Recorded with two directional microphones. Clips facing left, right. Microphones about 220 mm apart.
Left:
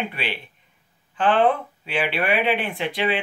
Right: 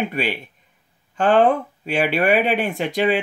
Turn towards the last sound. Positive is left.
turn(degrees=-45)  # may be behind; listen again after turning